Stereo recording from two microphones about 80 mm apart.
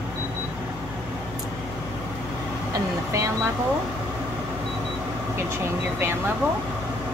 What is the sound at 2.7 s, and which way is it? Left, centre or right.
Speech, right.